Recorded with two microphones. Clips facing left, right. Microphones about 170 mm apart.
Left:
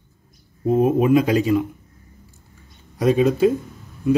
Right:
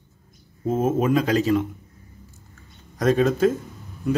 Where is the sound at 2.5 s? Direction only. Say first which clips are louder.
Left 3 dB; 10° left (ahead or behind).